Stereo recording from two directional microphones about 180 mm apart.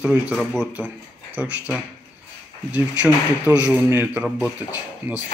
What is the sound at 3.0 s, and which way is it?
Speech, 10° right (ahead or behind).